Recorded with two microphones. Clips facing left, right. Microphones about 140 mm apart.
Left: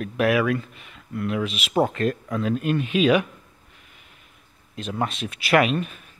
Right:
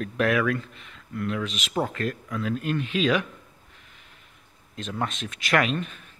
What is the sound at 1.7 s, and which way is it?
Speech, 25° left (ahead or behind).